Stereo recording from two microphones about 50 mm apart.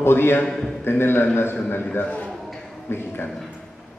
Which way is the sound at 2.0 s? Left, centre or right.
Left.